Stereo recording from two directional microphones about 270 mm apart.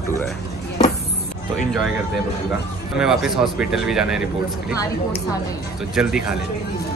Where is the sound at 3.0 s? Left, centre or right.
Centre.